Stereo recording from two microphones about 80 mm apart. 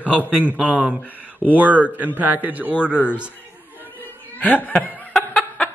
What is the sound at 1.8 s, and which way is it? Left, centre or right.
Speech, right.